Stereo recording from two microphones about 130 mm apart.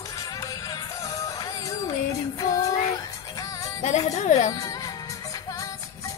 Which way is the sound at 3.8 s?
60° left (ahead or behind).